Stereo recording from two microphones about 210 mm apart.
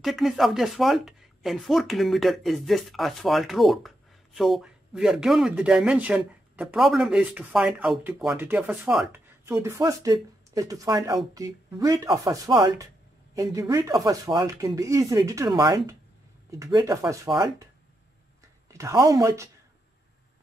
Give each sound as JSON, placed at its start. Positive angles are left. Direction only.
{"t": 0.0, "sound": "speech", "side_deg": 0}
{"t": 9.5, "sound": "speech", "side_deg": -15}
{"t": 18.7, "sound": "speech", "side_deg": -15}